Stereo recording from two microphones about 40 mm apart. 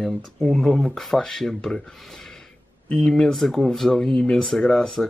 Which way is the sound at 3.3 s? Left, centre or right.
Centre.